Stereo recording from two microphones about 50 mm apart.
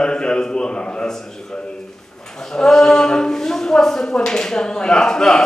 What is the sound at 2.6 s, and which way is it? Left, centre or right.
Speech, centre.